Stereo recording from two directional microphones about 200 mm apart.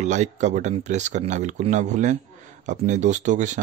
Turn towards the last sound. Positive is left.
turn(degrees=-35)  # may be behind; listen again after turning